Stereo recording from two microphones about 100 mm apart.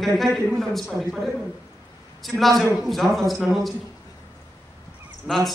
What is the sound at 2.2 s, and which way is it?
A man's voice, centre (ahead or behind).